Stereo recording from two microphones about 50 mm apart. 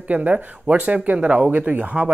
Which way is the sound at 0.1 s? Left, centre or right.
Right.